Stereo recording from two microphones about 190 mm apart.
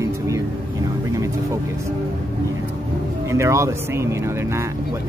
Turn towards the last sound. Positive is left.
turn(degrees=-15)  # may be behind; listen again after turning